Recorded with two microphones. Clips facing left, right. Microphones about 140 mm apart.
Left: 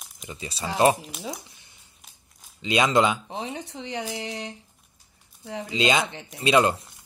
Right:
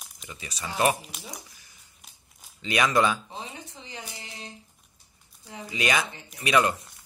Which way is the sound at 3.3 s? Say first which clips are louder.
Left 7 dB; 75° left (ahead or behind).